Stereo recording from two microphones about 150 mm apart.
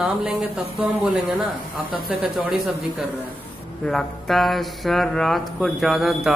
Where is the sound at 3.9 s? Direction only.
Centre (ahead or behind).